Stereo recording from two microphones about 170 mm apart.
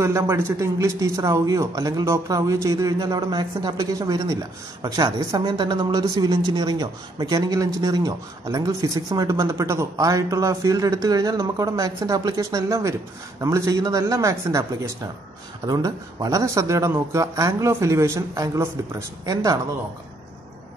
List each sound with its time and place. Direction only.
0.0 s a woman's voice: 15° right (ahead or behind)
15.6 s a woman's voice: 20° right (ahead or behind)